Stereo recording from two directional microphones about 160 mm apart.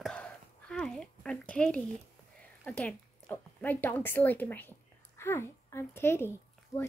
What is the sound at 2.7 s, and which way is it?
A woman's voice, 10° left (ahead or behind).